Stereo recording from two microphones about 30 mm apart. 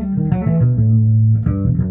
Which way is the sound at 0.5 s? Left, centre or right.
Left.